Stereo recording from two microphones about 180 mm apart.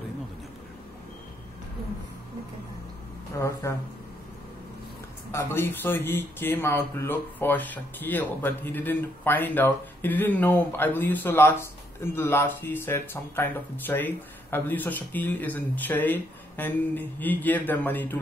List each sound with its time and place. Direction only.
3.3 s speech: 15° left (ahead or behind)
5.3 s speech: 15° left (ahead or behind)